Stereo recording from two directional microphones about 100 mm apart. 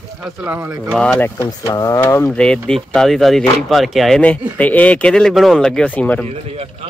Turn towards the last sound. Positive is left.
turn(degrees=15)  # may be behind; listen again after turning